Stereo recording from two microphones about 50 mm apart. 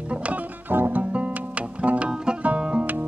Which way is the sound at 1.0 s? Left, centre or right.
Right.